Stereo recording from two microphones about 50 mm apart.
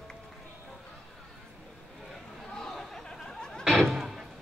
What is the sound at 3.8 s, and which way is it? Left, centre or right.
Music, centre.